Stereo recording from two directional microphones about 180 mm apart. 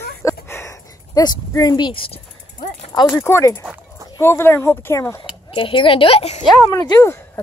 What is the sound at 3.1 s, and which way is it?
Speech, 15° left (ahead or behind).